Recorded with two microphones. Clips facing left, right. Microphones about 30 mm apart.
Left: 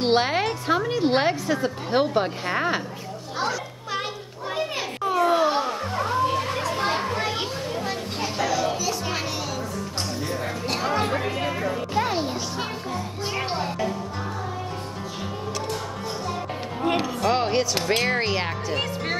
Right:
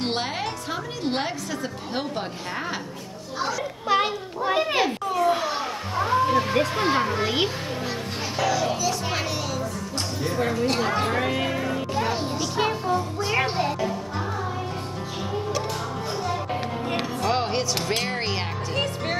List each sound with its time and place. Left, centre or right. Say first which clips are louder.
0.0 s a woman's voice: left 6 dB; centre
3.9 s children playing: right 8 dB; right
5.0 s children playing: left 1 dB; centre
5.6 s music: left 1 dB; centre
6.8 s a child's voice: right 2 dB; centre
8.4 s music: right 1 dB; centre
10.5 s speech: left 1 dB; centre
11.1 s speech: right 2 dB; centre
11.9 s music: left 3 dB; centre
17.2 s music: left 1 dB; centre